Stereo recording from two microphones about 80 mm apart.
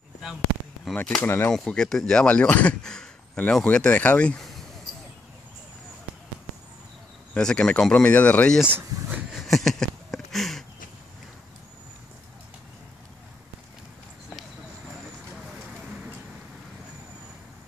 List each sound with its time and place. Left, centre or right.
1.2 s speech: left
1.5 s speech: centre
7.3 s speech: centre
8.6 s speech: right
9.3 s a sound: centre